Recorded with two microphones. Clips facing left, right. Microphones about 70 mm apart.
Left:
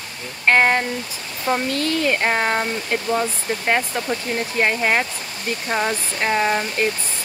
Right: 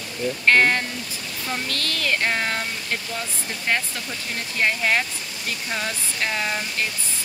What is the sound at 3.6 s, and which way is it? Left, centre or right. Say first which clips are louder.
Speech: left 5 dB; left.